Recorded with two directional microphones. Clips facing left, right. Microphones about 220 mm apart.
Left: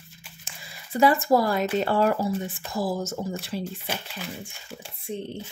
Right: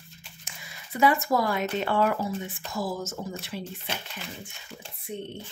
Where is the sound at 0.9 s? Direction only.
35° left (ahead or behind).